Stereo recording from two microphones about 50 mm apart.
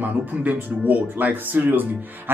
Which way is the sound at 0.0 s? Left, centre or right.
Right.